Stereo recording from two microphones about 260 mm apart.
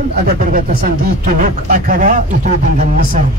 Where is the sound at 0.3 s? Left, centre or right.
Right.